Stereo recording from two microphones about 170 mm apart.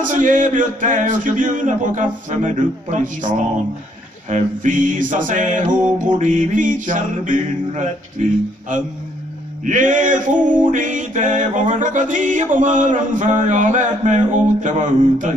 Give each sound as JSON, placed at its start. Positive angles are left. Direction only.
{"t": 0.0, "sound": "male singing", "side_deg": -50}